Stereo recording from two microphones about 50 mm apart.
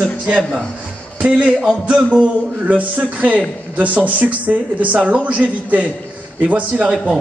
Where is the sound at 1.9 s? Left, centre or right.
Centre.